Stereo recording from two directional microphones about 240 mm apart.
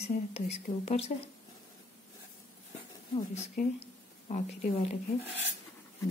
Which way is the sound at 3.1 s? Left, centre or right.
Left.